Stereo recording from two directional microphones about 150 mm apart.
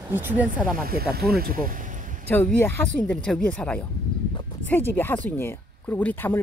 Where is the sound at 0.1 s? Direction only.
10° right (ahead or behind).